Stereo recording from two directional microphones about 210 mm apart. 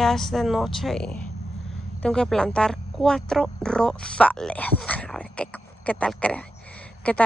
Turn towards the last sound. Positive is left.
turn(degrees=5)  # may be behind; listen again after turning